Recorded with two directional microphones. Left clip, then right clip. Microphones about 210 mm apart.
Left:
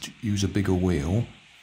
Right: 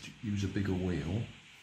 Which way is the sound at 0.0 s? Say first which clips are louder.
Left 10 dB; 45° left (ahead or behind).